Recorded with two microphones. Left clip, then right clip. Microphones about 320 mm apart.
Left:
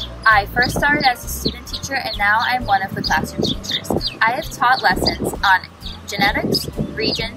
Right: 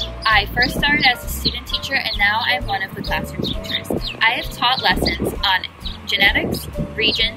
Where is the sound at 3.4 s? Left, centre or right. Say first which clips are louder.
Left 2 dB; right.